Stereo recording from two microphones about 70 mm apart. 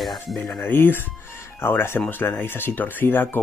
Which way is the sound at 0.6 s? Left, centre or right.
Left.